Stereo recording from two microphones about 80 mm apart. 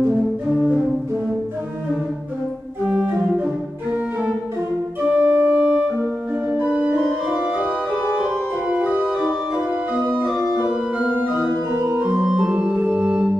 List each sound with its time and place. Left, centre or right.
5.0 s music: right
6.5 s organ: centre
7.0 s organ: centre
8.6 s organ: centre
10.2 s organ: centre
11.1 s organ: centre
11.7 s organ: right
12.3 s organ: centre